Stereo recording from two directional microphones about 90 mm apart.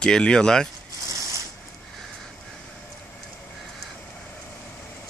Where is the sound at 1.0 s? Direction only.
35° right (ahead or behind).